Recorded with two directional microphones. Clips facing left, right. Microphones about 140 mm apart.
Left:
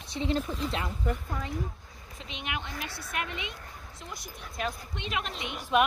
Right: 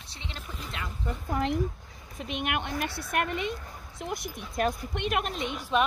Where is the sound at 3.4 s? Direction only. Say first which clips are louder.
Right 7 dB; 45° right (ahead or behind).